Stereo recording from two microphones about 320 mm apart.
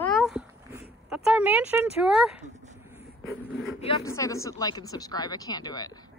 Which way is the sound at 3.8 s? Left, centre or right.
Centre.